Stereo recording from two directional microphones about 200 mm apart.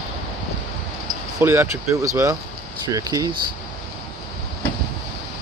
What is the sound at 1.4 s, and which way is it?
Speech, 10° right (ahead or behind).